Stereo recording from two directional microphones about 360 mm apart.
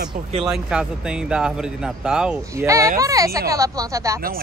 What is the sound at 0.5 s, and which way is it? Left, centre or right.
Speech, centre.